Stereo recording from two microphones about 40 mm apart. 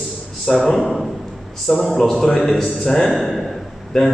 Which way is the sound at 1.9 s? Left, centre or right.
Centre.